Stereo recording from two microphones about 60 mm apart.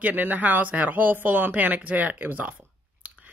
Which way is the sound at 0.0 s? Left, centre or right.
Right.